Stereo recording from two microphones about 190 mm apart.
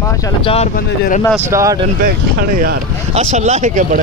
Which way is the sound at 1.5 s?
15° right (ahead or behind).